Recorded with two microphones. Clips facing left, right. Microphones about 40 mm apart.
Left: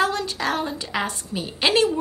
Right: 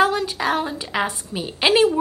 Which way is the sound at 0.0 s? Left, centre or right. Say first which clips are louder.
Right 4 dB; centre.